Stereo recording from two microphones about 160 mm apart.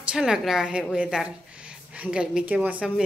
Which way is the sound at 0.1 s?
5° right (ahead or behind).